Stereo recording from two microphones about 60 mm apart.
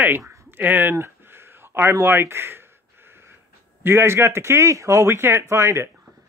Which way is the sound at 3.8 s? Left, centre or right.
Right.